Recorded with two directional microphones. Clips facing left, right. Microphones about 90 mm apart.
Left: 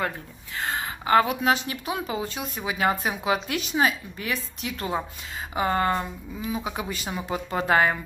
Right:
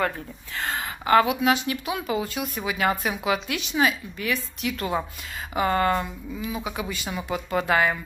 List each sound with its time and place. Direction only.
0.6 s speech: 20° left (ahead or behind)
1.3 s speech: 40° left (ahead or behind)
6.4 s speech: 35° left (ahead or behind)